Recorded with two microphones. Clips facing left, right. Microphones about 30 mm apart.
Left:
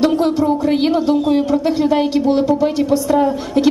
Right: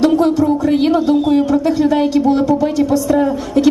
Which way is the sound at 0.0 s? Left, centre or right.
Left.